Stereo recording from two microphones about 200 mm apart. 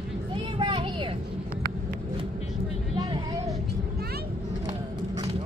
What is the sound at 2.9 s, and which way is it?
Vehicle, 20° right (ahead or behind).